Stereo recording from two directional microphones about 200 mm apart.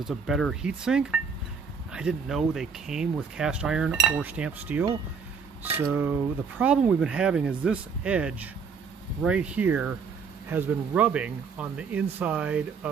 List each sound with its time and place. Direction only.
0.0 s speech: centre (ahead or behind)